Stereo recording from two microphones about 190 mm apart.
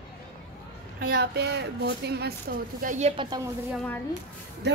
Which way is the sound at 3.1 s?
25° right (ahead or behind).